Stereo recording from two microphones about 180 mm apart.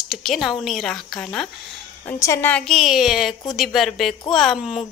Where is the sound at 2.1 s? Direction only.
15° left (ahead or behind).